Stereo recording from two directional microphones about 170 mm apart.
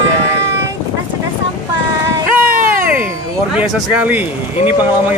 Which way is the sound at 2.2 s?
10° right (ahead or behind).